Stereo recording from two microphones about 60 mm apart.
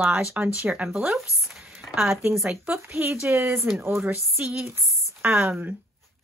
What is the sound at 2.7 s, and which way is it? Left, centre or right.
Speech, right.